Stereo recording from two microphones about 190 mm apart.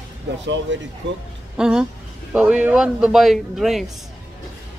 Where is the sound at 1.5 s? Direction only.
5° right (ahead or behind).